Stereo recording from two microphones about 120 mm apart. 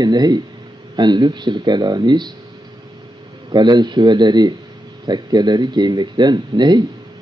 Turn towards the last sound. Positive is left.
turn(degrees=-40)  # may be behind; listen again after turning